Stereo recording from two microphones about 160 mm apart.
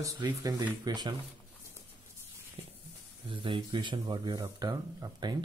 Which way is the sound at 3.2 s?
30° right (ahead or behind).